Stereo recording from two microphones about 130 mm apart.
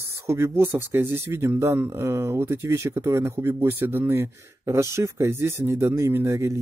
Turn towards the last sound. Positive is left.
turn(degrees=-20)  # may be behind; listen again after turning